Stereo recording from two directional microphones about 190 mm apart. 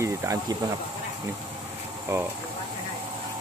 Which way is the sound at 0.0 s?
15° right (ahead or behind).